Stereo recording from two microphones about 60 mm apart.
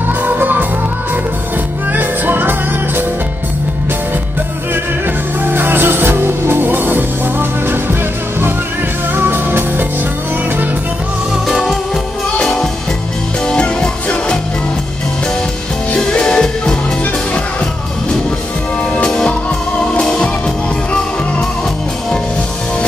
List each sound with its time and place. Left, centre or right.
0.2 s music: right
1.9 s music: right
5.4 s music: right
11.4 s music: centre
13.5 s music: centre
16.0 s music: centre
19.0 s music: centre